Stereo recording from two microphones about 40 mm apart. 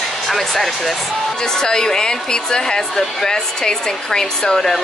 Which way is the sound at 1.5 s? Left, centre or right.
Centre.